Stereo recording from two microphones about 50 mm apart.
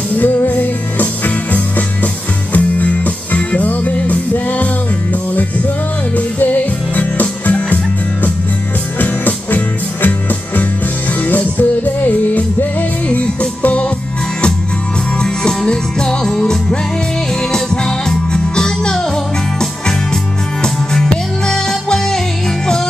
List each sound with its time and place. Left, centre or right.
0.5 s music: left
6.1 s music: left
11.2 s music: left
15.2 s music: centre
18.3 s music: centre
20.6 s music: centre